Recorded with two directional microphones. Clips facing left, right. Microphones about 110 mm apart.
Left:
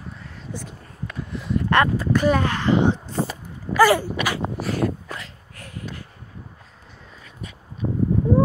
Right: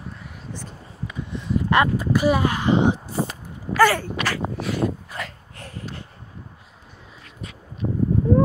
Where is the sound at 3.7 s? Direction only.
5° left (ahead or behind).